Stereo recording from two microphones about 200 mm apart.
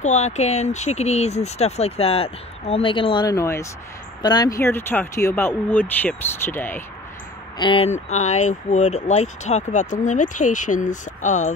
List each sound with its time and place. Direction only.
0.0 s speech: 35° left (ahead or behind); by 6.8 s 10° left (ahead or behind)
7.5 s speech: 25° left (ahead or behind)